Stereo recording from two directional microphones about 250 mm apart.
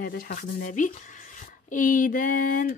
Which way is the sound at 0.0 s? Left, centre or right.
Left.